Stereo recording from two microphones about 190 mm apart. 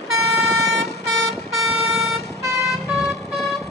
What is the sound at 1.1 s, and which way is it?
Vehicle, centre (ahead or behind).